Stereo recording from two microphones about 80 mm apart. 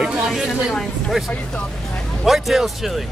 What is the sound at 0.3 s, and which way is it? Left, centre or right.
Speech, centre.